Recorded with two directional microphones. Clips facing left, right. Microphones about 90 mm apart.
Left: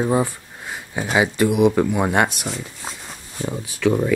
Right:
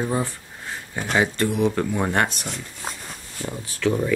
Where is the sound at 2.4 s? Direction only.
Centre (ahead or behind).